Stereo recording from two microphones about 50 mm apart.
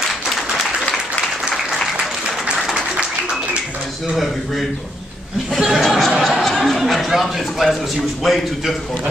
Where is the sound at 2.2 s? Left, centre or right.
Centre.